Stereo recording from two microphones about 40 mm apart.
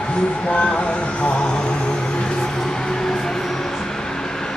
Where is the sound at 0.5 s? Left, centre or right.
Left.